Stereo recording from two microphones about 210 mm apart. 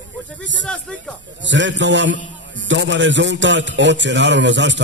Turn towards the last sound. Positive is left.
turn(degrees=-60)  # may be behind; listen again after turning